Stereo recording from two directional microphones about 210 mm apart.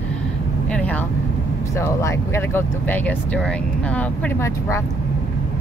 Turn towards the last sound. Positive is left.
turn(degrees=10)  # may be behind; listen again after turning